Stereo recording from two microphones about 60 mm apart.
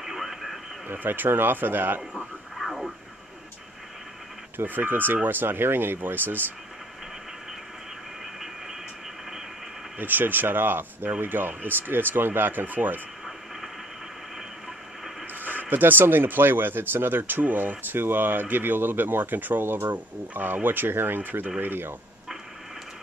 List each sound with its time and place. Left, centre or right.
0.0 s radio: centre
0.8 s speech: right
2.1 s a sound: centre
4.6 s speech: right
9.9 s speech: right
15.4 s speech: right